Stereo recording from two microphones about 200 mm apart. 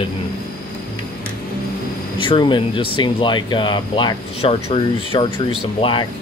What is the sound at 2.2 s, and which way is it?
Speech, 25° left (ahead or behind).